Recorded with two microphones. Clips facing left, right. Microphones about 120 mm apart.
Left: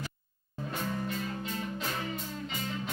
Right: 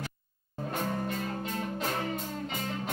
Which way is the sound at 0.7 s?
50° right (ahead or behind).